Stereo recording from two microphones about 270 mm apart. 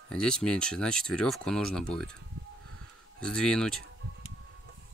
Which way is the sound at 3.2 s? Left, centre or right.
Centre.